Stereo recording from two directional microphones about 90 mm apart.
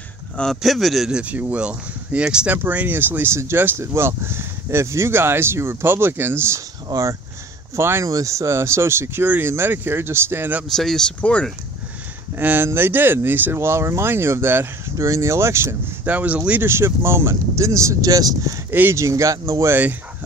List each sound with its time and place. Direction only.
0.6 s a man's voice: centre (ahead or behind)
1.2 s speech: 15° right (ahead or behind)
6.9 s speech: 40° right (ahead or behind)
10.7 s speech: 5° left (ahead or behind)
12.4 s speech: 20° right (ahead or behind)
16.1 s speech: 15° right (ahead or behind)
16.6 s speech: 25° right (ahead or behind)
18.7 s speech: 25° right (ahead or behind)